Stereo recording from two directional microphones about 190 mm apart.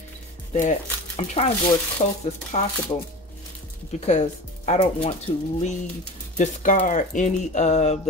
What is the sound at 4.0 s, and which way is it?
Speech, 35° left (ahead or behind).